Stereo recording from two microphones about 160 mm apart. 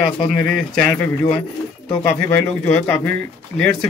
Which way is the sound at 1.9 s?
5° left (ahead or behind).